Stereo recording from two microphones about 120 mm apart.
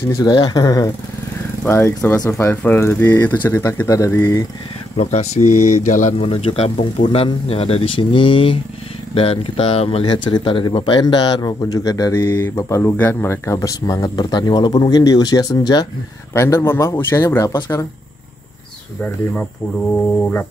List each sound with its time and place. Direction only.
0.1 s speech: 35° left (ahead or behind)
1.6 s speech: 20° left (ahead or behind)
4.9 s speech: 65° left (ahead or behind); by 6.1 s 90° left
6.1 s speech: 55° left (ahead or behind)
10.0 s speech: 40° left (ahead or behind)